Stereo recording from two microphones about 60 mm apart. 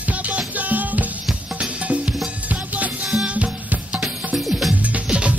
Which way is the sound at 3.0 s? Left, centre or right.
Centre.